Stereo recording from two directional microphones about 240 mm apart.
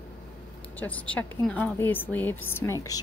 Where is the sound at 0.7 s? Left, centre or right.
Centre.